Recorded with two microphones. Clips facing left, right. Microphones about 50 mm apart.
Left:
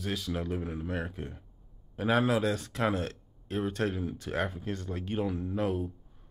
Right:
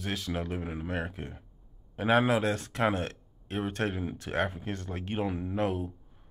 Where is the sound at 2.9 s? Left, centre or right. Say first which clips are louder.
Even; right.